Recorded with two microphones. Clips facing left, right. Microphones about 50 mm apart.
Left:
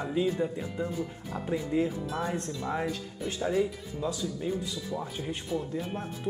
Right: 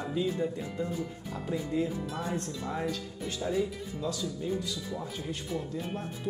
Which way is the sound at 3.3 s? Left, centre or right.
Left.